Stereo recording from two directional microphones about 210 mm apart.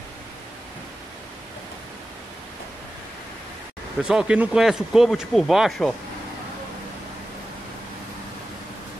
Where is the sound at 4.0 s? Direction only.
5° right (ahead or behind).